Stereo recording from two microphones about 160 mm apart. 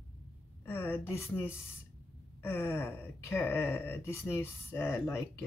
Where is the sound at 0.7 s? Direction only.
15° left (ahead or behind).